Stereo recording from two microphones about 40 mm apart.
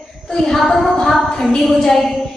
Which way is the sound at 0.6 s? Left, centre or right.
Centre.